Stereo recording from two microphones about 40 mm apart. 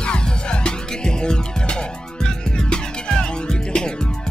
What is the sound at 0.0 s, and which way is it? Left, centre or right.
Music, left.